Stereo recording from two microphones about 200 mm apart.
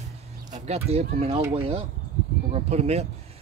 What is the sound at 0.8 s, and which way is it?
Speech, 30° right (ahead or behind).